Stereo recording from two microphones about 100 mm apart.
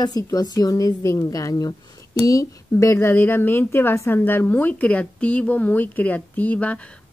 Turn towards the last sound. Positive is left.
turn(degrees=15)  # may be behind; listen again after turning